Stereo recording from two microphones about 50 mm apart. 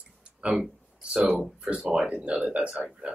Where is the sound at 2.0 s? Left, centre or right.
Right.